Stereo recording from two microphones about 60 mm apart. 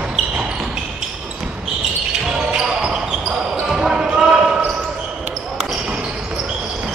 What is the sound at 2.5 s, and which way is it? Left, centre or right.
Basketball bounce, centre.